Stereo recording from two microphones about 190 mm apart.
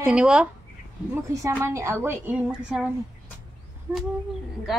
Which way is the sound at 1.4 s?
15° right (ahead or behind).